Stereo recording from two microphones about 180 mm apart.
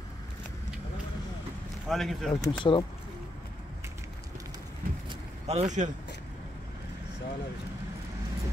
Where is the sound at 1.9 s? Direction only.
Centre (ahead or behind).